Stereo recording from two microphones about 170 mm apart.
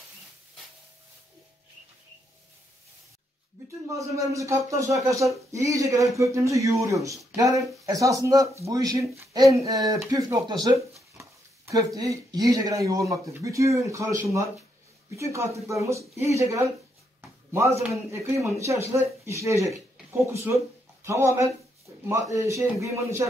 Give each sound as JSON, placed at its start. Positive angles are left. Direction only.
{"t": 3.9, "sound": "speech", "side_deg": -20}
{"t": 15.1, "sound": "speech", "side_deg": -15}
{"t": 17.2, "sound": "a sound", "side_deg": -15}
{"t": 17.8, "sound": "speech", "side_deg": -15}